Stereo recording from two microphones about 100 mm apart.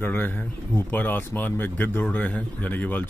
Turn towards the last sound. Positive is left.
turn(degrees=15)  # may be behind; listen again after turning